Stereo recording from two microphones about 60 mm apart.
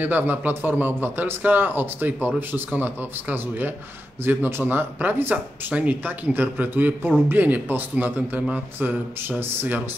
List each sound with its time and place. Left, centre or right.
0.0 s a man's voice: right
5.3 s a man's voice: right